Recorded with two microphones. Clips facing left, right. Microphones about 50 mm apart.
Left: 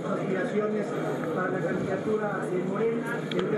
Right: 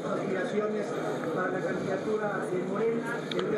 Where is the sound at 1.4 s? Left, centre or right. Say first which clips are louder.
Left 2 dB; left.